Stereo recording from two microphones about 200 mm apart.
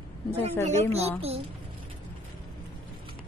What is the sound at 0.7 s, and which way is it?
Speech, 30° right (ahead or behind).